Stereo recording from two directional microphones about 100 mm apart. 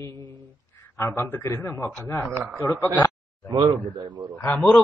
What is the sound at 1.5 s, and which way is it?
Mantra, 20° left (ahead or behind).